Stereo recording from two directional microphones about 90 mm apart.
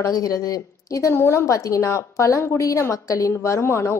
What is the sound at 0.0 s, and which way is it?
A woman's voice, 45° left (ahead or behind).